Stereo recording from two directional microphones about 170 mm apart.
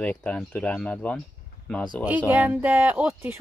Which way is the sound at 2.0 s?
10° right (ahead or behind).